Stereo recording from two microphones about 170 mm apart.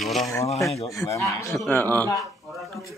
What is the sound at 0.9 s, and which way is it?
Speech, 20° left (ahead or behind).